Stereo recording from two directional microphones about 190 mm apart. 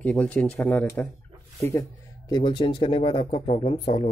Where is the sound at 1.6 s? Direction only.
15° left (ahead or behind).